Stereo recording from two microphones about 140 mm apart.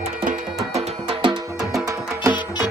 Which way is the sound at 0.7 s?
40° right (ahead or behind).